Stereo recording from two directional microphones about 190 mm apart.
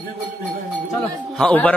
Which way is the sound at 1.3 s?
5° left (ahead or behind).